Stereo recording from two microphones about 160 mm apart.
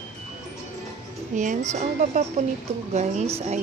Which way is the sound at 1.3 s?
50° right (ahead or behind).